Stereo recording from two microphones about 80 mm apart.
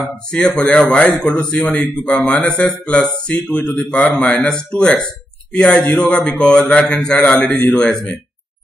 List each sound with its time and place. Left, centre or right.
0.3 s a man's voice: centre